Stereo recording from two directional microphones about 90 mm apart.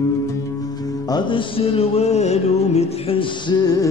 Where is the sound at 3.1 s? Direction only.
70° left (ahead or behind).